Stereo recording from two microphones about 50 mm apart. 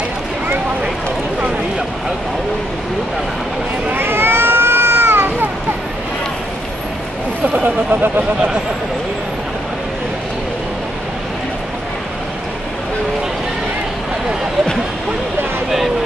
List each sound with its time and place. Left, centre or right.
3.9 s cat: right
7.5 s a sound: right
8.2 s speech: centre